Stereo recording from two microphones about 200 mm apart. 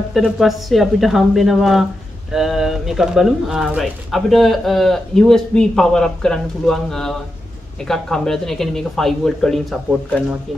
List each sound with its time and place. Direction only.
0.1 s speech: centre (ahead or behind)